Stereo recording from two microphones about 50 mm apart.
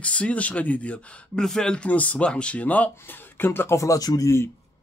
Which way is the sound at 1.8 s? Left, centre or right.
Left.